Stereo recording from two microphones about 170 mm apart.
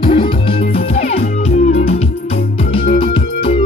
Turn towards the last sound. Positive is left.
turn(degrees=30)  # may be behind; listen again after turning